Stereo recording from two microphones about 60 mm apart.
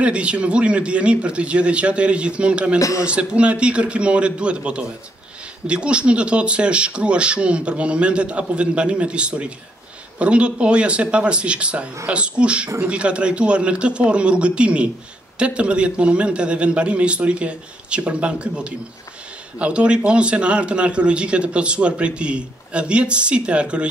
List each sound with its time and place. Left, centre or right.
0.0 s a man's voice: centre